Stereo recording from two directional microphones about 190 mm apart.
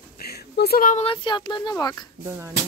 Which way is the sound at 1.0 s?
25° left (ahead or behind).